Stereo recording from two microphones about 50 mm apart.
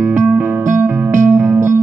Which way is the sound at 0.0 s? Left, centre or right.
Right.